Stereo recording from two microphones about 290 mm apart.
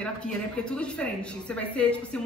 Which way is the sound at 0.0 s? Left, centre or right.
Centre.